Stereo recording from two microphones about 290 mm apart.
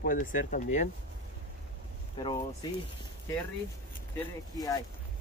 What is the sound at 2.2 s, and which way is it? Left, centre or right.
Speech, centre.